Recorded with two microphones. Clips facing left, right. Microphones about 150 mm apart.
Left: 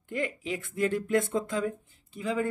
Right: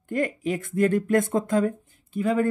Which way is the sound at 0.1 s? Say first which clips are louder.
Right 6 dB; 45° right (ahead or behind).